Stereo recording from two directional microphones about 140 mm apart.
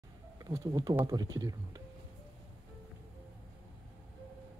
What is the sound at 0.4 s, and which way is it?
Speech, 25° right (ahead or behind).